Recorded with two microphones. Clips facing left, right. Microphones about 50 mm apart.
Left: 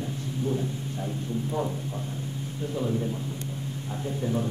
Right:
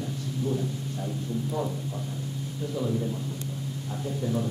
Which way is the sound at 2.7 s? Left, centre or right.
Left.